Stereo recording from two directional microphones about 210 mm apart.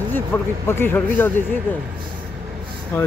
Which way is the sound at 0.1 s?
10° left (ahead or behind).